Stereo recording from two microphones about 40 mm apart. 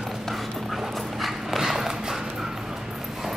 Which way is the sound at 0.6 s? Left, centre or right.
Centre.